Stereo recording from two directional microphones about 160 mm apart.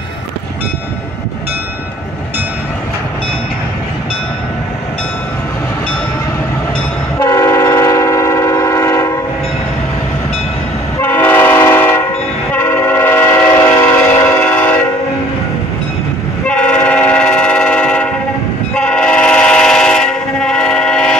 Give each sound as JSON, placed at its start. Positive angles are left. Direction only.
{"t": 7.2, "sound": "train", "side_deg": 20}
{"t": 11.0, "sound": "train", "side_deg": 15}
{"t": 16.4, "sound": "train", "side_deg": 5}